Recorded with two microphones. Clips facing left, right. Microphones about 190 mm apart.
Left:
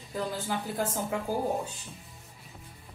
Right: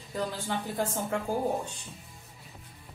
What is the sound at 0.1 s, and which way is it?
A woman's voice, centre (ahead or behind).